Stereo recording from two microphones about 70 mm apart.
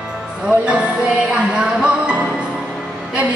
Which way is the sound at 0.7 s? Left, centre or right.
Centre.